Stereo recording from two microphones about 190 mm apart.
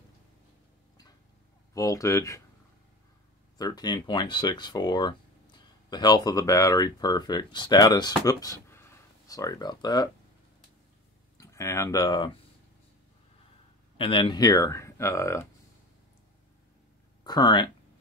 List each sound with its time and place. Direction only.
1.7 s speech: 15° left (ahead or behind)
3.5 s speech: 20° left (ahead or behind)
11.3 s speech: 15° left (ahead or behind)
13.9 s speech: 25° left (ahead or behind)
17.2 s speech: 20° left (ahead or behind)